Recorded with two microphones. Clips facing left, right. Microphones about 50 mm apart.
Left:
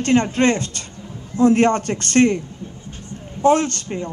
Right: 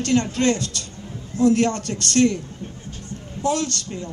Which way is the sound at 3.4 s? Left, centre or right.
Left.